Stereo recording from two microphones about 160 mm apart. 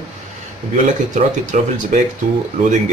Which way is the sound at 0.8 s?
50° right (ahead or behind).